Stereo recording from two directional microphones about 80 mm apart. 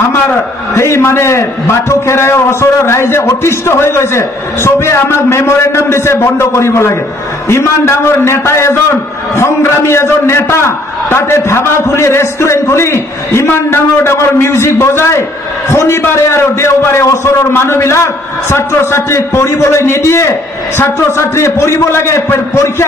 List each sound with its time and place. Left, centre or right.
0.7 s a man's voice: left